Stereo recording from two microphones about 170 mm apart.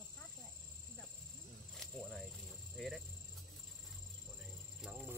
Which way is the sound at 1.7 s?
5° left (ahead or behind).